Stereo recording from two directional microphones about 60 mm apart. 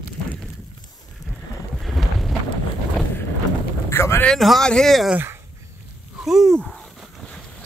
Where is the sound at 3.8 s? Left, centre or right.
Left.